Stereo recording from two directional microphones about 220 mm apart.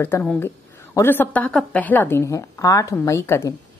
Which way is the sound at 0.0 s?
10° left (ahead or behind).